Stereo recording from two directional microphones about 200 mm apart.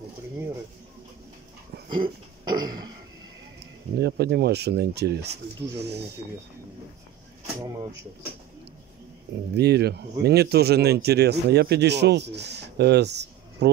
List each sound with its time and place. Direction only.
1.9 s a sound: 20° right (ahead or behind)
4.0 s speech: 55° right (ahead or behind)
7.6 s speech: 20° right (ahead or behind)
9.5 s speech: 55° right (ahead or behind)